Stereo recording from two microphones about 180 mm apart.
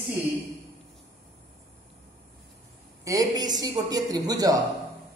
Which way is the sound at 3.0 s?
20° right (ahead or behind).